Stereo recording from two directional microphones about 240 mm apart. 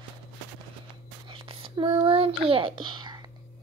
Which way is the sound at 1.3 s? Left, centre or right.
Right.